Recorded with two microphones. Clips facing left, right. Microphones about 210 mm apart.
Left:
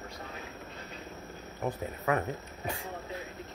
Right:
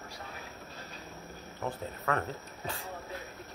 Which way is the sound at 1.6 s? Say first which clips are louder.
Left 3 dB; 15° left (ahead or behind).